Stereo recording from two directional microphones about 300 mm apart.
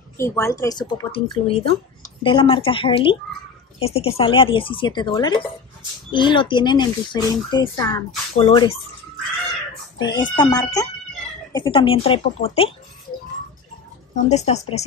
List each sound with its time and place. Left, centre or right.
0.2 s speech: centre
9.9 s speech: centre
14.3 s speech: left